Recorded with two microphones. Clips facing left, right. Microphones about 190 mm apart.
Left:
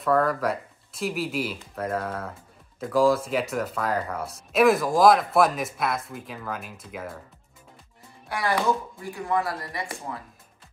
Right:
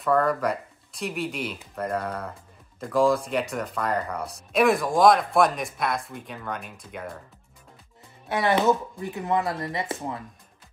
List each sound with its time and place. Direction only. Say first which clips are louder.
0.0 s speech: even; centre (ahead or behind)
8.3 s speech: right 3 dB; 20° right (ahead or behind)